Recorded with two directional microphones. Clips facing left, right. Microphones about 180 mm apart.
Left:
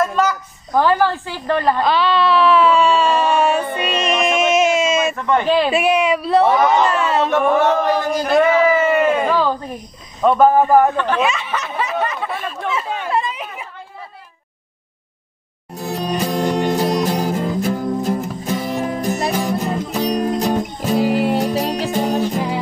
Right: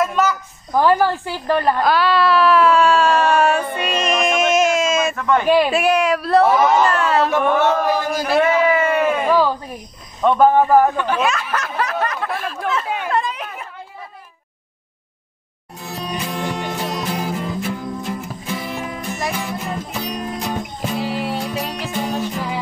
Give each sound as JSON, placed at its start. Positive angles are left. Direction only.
{"t": 0.0, "sound": "a woman's voice", "side_deg": -5}
{"t": 5.4, "sound": "a man's voice", "side_deg": -10}
{"t": 5.7, "sound": "speech", "side_deg": 0}
{"t": 7.7, "sound": "a sound", "side_deg": -5}
{"t": 10.2, "sound": "speech", "side_deg": 5}
{"t": 11.2, "sound": "a sound", "side_deg": 0}
{"t": 16.0, "sound": "music", "side_deg": 40}